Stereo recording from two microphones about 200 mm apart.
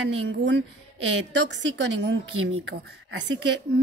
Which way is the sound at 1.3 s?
65° right (ahead or behind).